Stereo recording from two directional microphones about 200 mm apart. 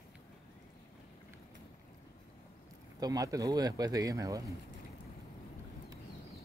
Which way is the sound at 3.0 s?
20° right (ahead or behind).